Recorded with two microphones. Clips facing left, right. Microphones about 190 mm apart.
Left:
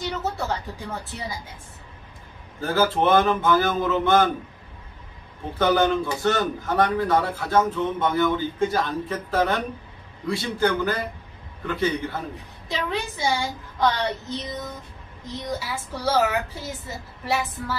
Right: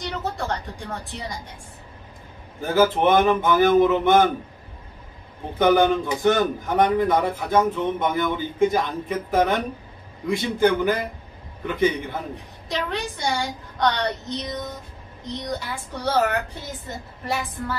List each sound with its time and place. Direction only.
0.0 s a woman's voice: 5° left (ahead or behind)
2.6 s a man's voice: 15° right (ahead or behind)
5.6 s a man's voice: 15° right (ahead or behind)
12.6 s a woman's voice: centre (ahead or behind)